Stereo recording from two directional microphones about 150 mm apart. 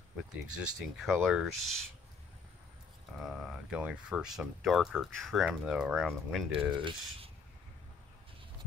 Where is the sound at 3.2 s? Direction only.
5° right (ahead or behind).